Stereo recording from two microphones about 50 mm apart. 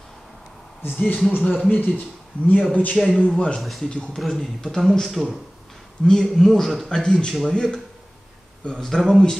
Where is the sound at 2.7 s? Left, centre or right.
Left.